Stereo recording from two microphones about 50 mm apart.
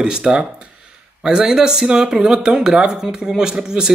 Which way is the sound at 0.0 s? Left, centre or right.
Centre.